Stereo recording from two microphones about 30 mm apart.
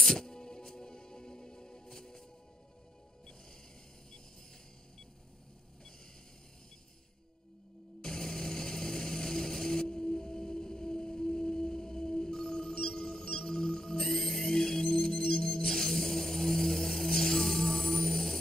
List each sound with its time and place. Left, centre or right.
0.1 s music: centre
8.0 s a sound: left
14.4 s music: left